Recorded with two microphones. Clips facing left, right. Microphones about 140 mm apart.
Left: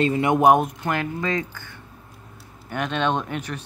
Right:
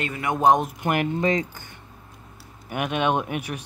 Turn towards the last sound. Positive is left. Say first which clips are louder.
# right 1 dB
turn(degrees=-10)  # may be behind; listen again after turning